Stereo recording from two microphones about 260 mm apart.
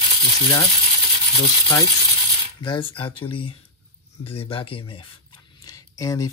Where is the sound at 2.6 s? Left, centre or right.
Centre.